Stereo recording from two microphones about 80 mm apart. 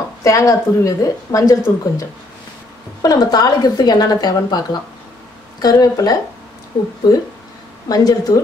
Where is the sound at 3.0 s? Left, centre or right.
Left.